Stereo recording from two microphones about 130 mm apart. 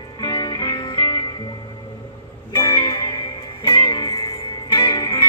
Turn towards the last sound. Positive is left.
turn(degrees=30)  # may be behind; listen again after turning